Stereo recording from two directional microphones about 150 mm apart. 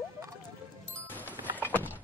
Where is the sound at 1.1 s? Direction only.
10° left (ahead or behind).